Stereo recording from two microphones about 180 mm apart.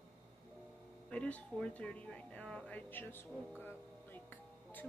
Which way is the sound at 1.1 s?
5° left (ahead or behind).